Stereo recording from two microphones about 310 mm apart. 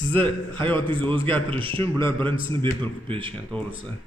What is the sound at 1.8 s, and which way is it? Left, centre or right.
Speech, centre.